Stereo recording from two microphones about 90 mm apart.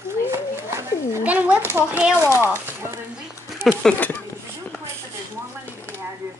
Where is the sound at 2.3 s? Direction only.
30° left (ahead or behind).